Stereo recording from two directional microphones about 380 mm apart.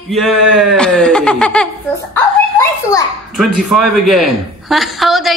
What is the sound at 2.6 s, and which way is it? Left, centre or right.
A child's voice, centre.